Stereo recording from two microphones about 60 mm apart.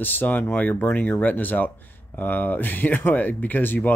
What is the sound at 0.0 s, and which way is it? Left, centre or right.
Speech, left.